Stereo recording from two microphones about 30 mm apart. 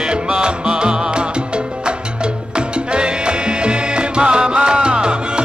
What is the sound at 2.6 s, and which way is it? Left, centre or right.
Music, right.